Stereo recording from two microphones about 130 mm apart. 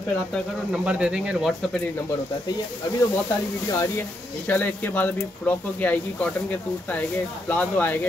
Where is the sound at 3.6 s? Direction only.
25° left (ahead or behind).